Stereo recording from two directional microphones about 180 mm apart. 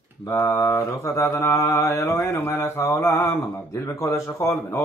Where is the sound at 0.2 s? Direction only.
15° left (ahead or behind).